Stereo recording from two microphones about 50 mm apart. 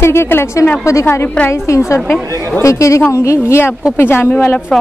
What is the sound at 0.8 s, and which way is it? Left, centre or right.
Speech, left.